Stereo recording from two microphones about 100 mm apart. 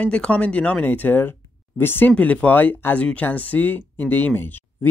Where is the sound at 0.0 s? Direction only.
10° left (ahead or behind).